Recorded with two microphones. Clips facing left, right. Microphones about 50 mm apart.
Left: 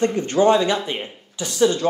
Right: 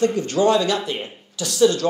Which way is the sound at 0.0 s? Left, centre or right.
Left.